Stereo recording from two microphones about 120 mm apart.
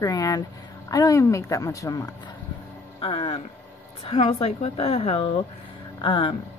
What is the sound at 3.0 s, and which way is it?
A woman's voice, 50° left (ahead or behind).